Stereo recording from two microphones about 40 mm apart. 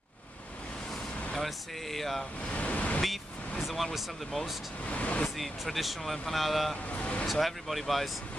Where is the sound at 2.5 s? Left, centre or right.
Left.